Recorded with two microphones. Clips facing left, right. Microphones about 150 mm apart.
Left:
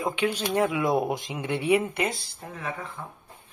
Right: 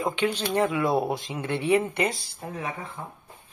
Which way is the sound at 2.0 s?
Centre (ahead or behind).